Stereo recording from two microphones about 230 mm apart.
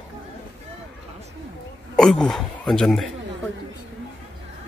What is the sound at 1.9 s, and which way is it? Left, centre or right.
A man's voice, centre.